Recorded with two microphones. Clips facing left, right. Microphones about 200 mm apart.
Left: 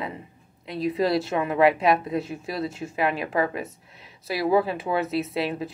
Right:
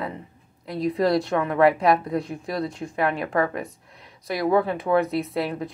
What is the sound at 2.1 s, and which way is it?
Speech, 5° left (ahead or behind).